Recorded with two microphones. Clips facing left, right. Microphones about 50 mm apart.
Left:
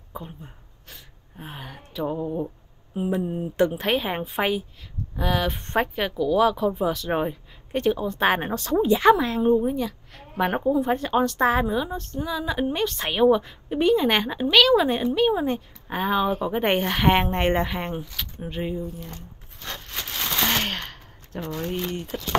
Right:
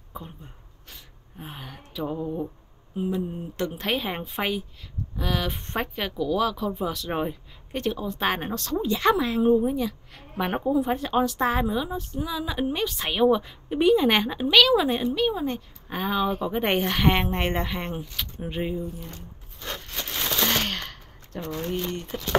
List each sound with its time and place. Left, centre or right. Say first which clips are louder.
0.1 s a sound: left 2 dB; centre
1.4 s speech: left 1 dB; centre
3.1 s mantra: left 3 dB; left
3.5 s speech: left 9 dB; centre
3.8 s a woman's voice: left 3 dB; centre
9.1 s a woman's voice: left 1 dB; centre
20.3 s gunshot: left 2 dB; centre